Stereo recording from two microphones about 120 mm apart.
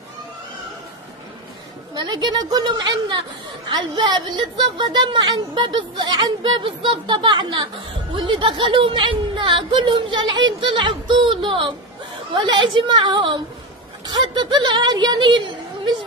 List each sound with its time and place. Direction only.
2.0 s a woman's voice: 35° right (ahead or behind)